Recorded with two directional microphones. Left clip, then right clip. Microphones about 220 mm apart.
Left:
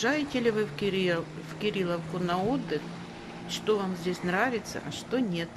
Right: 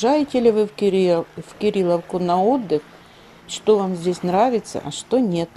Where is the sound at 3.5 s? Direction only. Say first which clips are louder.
Right 11 dB; 15° right (ahead or behind).